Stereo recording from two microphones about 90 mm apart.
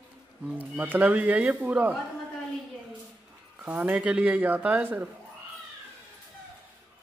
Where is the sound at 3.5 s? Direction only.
15° right (ahead or behind).